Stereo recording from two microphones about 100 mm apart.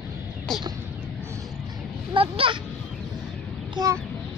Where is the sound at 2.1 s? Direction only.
60° right (ahead or behind).